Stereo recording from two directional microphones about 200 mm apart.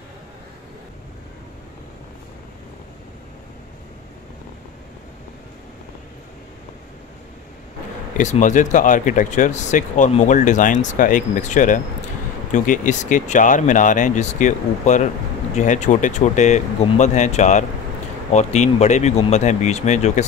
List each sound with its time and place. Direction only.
8.2 s speech: 35° left (ahead or behind)